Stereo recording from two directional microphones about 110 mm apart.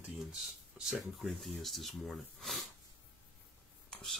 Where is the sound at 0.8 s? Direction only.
Centre (ahead or behind).